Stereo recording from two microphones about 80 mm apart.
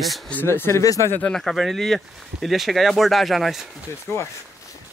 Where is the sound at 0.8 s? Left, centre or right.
Left.